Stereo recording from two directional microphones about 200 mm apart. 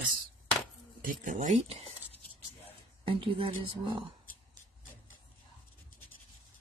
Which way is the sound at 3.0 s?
25° right (ahead or behind).